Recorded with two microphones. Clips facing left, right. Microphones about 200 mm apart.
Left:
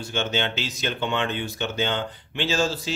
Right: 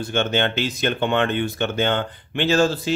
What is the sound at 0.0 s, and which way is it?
Speech, 55° right (ahead or behind).